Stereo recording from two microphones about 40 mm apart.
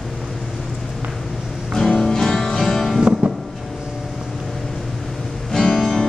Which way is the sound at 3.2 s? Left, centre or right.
Right.